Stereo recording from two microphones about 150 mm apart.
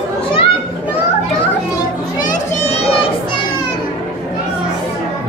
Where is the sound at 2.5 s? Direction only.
45° left (ahead or behind).